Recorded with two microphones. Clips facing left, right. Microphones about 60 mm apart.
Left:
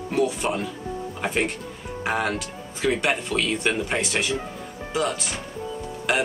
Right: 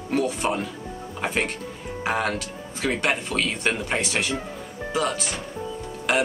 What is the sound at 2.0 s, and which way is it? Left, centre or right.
Speech, centre.